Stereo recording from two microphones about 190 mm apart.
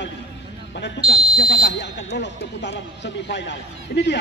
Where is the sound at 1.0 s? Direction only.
50° left (ahead or behind).